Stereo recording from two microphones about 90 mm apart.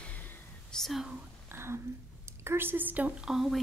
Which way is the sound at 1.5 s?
30° right (ahead or behind).